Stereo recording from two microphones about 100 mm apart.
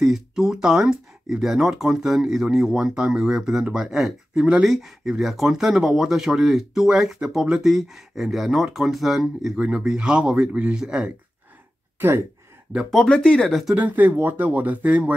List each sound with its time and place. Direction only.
0.0 s speech: 5° right (ahead or behind)
12.9 s speech: 10° left (ahead or behind)
13.7 s speech: 15° right (ahead or behind)